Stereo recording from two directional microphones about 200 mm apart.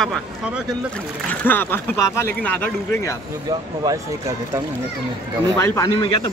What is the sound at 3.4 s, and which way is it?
Speech, 20° right (ahead or behind).